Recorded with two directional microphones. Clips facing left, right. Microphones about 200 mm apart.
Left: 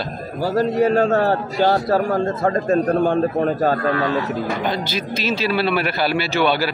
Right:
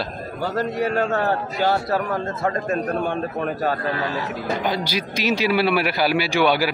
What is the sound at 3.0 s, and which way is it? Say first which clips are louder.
Speech: left 7 dB; 45° left (ahead or behind).